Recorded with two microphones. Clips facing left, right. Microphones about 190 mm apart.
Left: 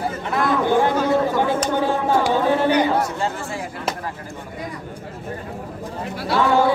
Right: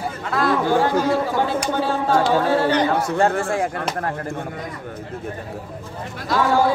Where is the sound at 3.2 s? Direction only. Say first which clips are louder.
Right 7 dB; 55° right (ahead or behind).